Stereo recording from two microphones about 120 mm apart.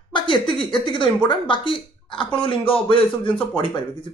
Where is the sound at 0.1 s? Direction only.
40° left (ahead or behind).